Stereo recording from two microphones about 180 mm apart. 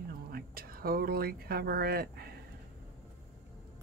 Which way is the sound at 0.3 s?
55° right (ahead or behind).